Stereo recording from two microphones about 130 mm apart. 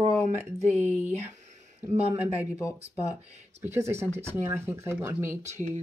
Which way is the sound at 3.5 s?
20° right (ahead or behind).